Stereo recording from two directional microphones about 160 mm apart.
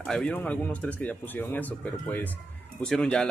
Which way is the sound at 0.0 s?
5° left (ahead or behind).